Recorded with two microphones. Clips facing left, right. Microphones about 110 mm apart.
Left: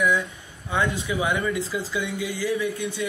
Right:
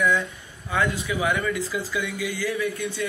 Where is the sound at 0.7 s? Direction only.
25° left (ahead or behind).